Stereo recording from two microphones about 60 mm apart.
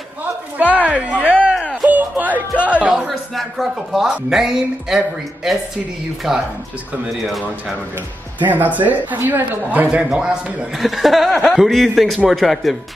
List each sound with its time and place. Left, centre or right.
0.2 s a sound: right
1.9 s music: right
3.1 s speech: centre
8.5 s speech: right
10.1 s speech: centre
10.8 s a man's voice: centre